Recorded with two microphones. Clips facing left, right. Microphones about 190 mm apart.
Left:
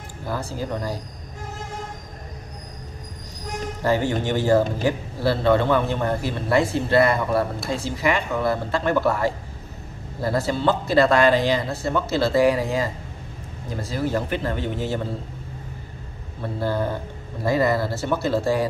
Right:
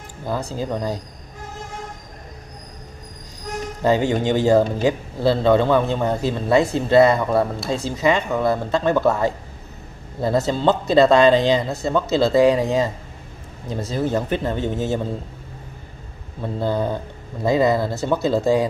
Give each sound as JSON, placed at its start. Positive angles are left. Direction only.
{"t": 0.3, "sound": "a man's voice", "side_deg": -20}
{"t": 3.8, "sound": "a man's voice", "side_deg": -20}
{"t": 16.5, "sound": "a man's voice", "side_deg": -20}